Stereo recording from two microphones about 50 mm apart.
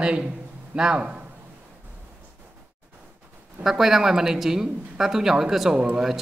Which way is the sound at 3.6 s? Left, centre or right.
Centre.